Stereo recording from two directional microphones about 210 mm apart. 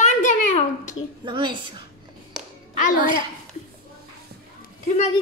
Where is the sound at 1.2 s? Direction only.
20° right (ahead or behind).